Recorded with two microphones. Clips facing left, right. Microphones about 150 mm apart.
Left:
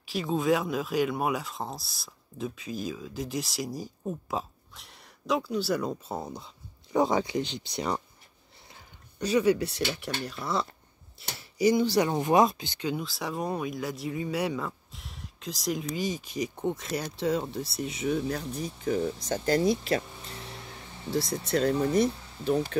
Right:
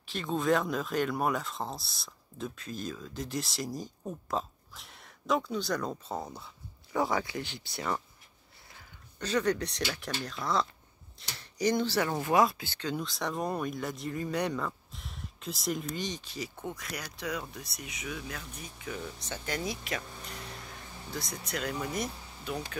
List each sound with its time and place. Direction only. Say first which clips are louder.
0.0 s speech: left 3 dB; 5° left (ahead or behind)
9.2 s speech: left 5 dB; 10° left (ahead or behind)
11.2 s a sound: left 5 dB; 5° left (ahead or behind)
11.5 s speech: left 5 dB; 10° left (ahead or behind)
12.9 s speech: left 1 dB; 5° left (ahead or behind); by 20.0 s 35° left (ahead or behind)
21.1 s speech: left 10 dB; 35° left (ahead or behind)